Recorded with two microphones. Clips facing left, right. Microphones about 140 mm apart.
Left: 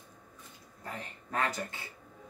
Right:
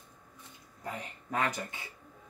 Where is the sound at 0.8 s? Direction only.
15° right (ahead or behind).